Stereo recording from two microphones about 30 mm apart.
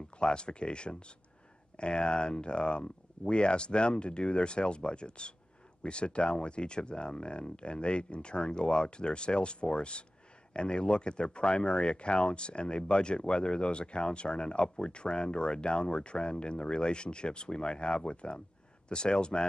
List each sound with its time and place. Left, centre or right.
0.2 s speech: left